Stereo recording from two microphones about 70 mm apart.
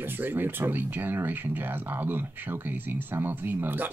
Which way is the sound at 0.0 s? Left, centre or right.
Right.